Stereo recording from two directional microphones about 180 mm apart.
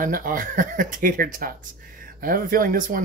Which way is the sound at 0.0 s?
50° right (ahead or behind).